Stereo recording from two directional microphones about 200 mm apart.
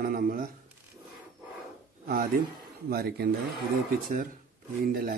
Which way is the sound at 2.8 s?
50° right (ahead or behind).